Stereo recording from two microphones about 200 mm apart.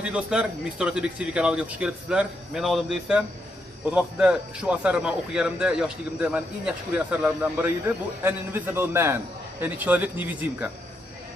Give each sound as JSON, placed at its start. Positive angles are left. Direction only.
{"t": 0.0, "sound": "a man's voice", "side_deg": -5}